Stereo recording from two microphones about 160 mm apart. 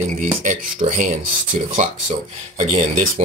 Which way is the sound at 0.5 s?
55° right (ahead or behind).